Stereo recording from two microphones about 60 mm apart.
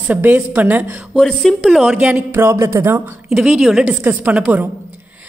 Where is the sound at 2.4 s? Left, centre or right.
Right.